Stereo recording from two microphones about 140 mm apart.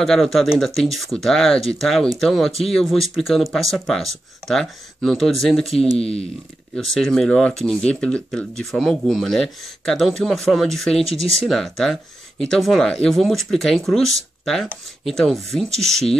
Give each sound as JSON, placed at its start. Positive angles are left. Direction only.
{"t": 0.0, "sound": "speech", "side_deg": 0}
{"t": 5.9, "sound": "speech", "side_deg": 45}
{"t": 6.7, "sound": "speech", "side_deg": 5}